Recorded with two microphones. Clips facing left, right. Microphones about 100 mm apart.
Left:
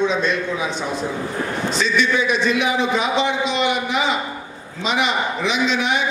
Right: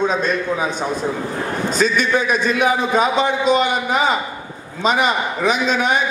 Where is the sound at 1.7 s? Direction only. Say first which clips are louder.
Right 2 dB; 45° right (ahead or behind).